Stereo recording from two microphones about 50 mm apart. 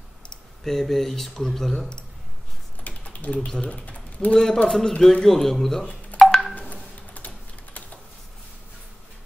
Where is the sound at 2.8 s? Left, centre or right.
Left.